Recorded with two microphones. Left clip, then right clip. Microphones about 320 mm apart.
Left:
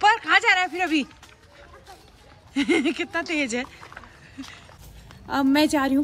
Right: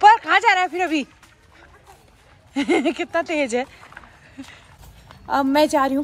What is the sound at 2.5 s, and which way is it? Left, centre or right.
Speech, centre.